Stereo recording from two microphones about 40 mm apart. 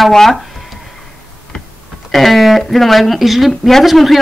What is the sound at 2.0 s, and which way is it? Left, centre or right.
Speech, centre.